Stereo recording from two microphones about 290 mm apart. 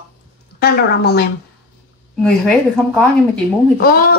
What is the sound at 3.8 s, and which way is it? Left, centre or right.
Speech, left.